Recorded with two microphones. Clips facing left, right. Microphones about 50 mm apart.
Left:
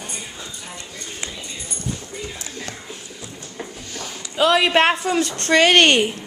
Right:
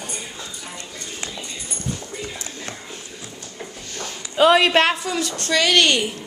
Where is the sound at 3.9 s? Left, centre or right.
Centre.